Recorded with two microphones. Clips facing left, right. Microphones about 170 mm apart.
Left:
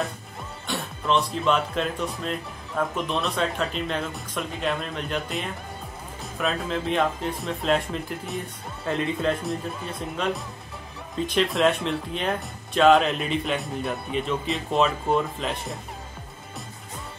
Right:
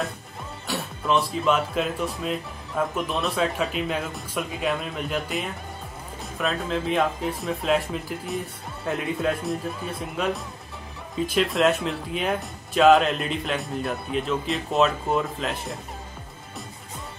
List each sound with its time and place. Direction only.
0.7 s speech: centre (ahead or behind)